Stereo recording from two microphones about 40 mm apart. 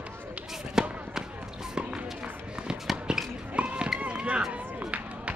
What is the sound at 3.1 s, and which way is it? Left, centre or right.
Basketball bounce, centre.